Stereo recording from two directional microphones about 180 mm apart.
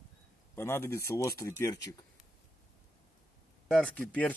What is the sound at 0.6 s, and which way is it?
Speech, 15° left (ahead or behind).